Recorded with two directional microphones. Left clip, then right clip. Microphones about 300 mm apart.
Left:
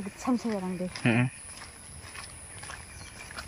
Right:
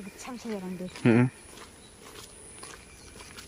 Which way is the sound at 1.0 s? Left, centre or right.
Centre.